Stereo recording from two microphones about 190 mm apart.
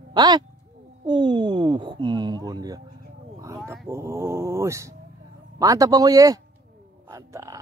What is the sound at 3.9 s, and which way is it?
Speech, 15° right (ahead or behind).